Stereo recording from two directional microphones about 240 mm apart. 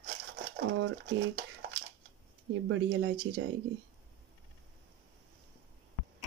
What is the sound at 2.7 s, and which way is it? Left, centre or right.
Speech, right.